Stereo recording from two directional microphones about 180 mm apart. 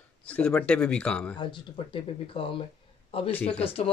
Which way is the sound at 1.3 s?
25° left (ahead or behind).